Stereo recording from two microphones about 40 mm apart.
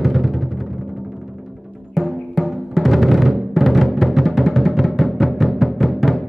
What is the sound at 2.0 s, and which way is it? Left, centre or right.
Music, centre.